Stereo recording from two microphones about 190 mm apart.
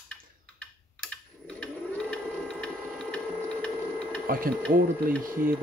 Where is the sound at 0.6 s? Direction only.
5° left (ahead or behind).